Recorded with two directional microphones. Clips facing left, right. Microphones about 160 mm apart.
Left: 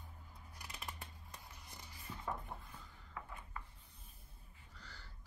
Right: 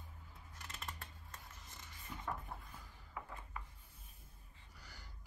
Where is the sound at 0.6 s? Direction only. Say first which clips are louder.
Even; 15° left (ahead or behind).